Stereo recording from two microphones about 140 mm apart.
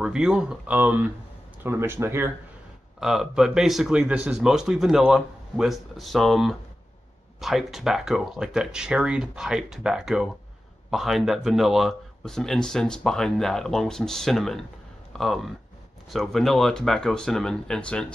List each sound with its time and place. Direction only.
0.0 s a man's voice: 5° right (ahead or behind)
3.0 s a man's voice: centre (ahead or behind)